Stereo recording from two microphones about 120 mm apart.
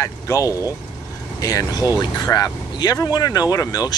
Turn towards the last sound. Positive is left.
turn(degrees=30)  # may be behind; listen again after turning